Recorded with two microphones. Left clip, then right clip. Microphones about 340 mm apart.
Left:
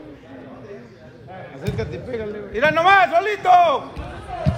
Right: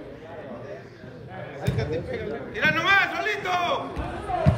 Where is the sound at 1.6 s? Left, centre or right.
Centre.